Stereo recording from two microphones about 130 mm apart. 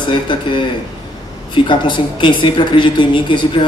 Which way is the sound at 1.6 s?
40° left (ahead or behind).